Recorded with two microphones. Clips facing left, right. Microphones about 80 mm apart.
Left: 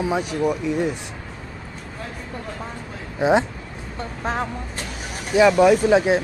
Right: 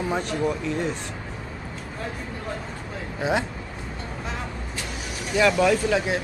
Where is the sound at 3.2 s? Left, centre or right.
Left.